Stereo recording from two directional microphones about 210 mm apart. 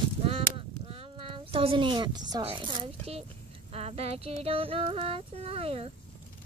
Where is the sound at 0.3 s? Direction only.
30° right (ahead or behind).